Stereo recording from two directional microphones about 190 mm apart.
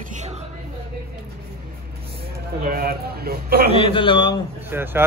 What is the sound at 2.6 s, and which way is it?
A man's voice, 50° right (ahead or behind).